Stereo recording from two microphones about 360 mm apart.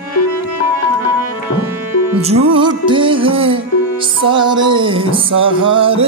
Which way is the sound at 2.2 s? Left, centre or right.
Centre.